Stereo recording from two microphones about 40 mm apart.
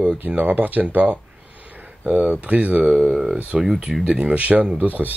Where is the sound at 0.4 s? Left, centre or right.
Right.